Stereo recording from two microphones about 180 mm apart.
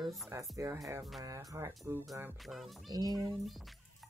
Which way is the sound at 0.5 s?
20° right (ahead or behind).